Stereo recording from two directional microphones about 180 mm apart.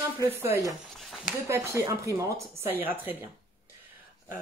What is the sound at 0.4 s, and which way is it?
Speech, 15° right (ahead or behind).